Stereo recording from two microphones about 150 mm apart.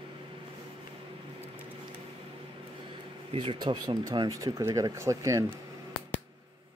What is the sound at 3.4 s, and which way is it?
Speech, 35° right (ahead or behind).